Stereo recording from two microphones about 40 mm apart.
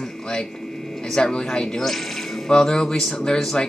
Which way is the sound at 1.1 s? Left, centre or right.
Centre.